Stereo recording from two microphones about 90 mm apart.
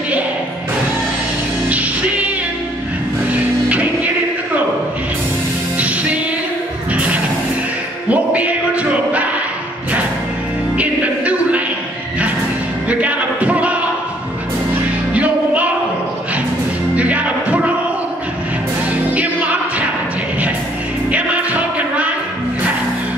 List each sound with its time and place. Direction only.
3.3 s music: 15° right (ahead or behind)
5.8 s music: 15° right (ahead or behind)
10.8 s music: 15° right (ahead or behind)
12.8 s music: 15° right (ahead or behind)
15.1 s music: 15° right (ahead or behind)
16.9 s music: 15° right (ahead or behind)
21.1 s music: 15° right (ahead or behind)